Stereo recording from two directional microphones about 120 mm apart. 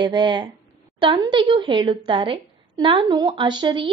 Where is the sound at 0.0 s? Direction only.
40° right (ahead or behind).